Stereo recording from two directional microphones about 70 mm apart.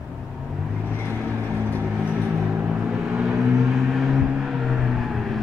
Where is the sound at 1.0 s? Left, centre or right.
Right.